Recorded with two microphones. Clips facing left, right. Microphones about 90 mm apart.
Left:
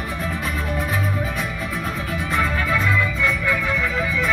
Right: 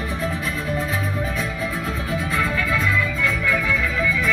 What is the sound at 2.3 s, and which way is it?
Music, 30° left (ahead or behind).